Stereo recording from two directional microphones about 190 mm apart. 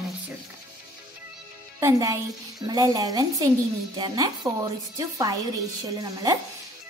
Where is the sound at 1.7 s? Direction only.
15° right (ahead or behind).